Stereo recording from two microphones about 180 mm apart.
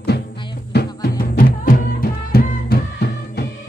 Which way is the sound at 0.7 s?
55° left (ahead or behind).